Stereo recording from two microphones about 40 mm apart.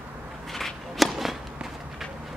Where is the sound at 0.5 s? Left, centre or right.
Centre.